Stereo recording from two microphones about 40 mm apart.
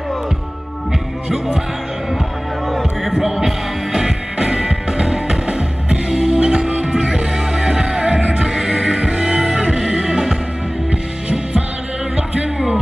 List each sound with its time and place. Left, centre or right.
2.7 s heart sounds: centre
3.3 s music: centre
6.4 s music: right
12.2 s music: right